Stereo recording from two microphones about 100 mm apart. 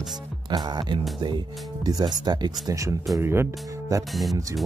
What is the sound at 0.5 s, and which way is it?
Speech, 45° right (ahead or behind).